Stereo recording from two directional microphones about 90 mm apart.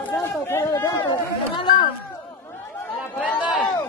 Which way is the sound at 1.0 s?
60° left (ahead or behind).